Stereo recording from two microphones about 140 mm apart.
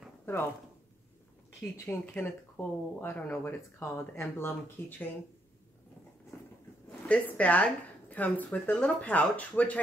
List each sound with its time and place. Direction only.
0.2 s a sound: 15° left (ahead or behind)
1.9 s speech: 10° left (ahead or behind)
7.1 s speech: 10° left (ahead or behind)